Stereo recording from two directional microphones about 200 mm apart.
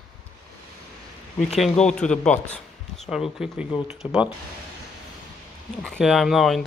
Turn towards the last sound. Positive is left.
turn(degrees=0)  # may be behind; listen again after turning